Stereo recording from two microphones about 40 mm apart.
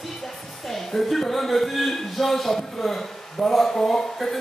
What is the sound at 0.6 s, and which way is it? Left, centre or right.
A man's voice, centre.